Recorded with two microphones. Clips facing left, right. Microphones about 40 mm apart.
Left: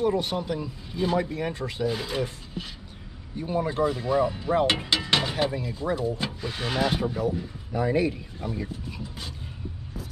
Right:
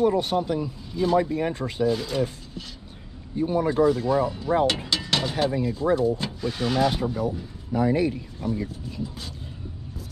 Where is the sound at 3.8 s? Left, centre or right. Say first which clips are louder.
Right 3 dB; centre.